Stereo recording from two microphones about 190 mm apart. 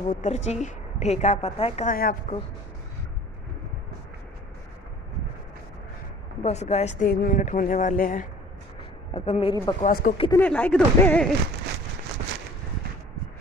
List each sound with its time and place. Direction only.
0.1 s a woman's voice: 40° left (ahead or behind)
2.0 s speech: 50° left (ahead or behind)
6.4 s speech: 35° left (ahead or behind)
9.1 s a woman's voice: 30° left (ahead or behind)
9.8 s speech: 50° left (ahead or behind)
10.3 s speech: 10° left (ahead or behind)